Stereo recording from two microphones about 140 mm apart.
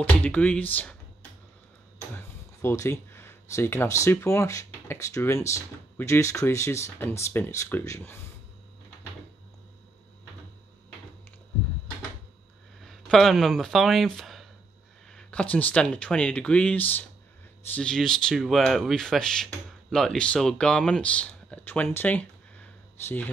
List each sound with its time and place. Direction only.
0.2 s speech: 10° left (ahead or behind)
2.1 s speech: 20° left (ahead or behind)
12.8 s speech: centre (ahead or behind)
21.9 s a sound: 10° left (ahead or behind)